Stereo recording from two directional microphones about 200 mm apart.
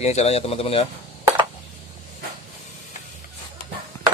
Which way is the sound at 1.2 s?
15° right (ahead or behind).